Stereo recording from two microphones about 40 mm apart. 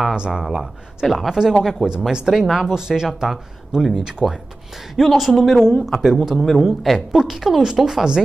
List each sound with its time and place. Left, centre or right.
0.3 s speech: centre
2.0 s speech: centre
4.2 s speech: centre
4.9 s speech: centre